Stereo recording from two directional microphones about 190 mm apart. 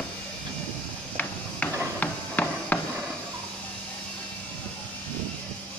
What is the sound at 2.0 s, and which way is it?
Hammer, 10° left (ahead or behind).